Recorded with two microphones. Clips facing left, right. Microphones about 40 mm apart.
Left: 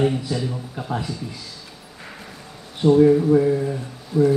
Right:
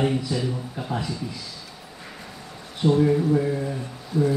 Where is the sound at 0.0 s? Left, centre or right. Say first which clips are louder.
Left 2 dB; centre.